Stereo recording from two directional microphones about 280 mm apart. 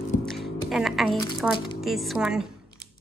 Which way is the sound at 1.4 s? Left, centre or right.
Centre.